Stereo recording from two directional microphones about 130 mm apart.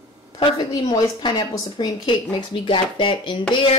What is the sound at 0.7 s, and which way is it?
A woman's voice, 35° left (ahead or behind).